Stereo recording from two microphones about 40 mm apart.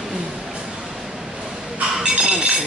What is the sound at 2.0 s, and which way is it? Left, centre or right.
Chink, right.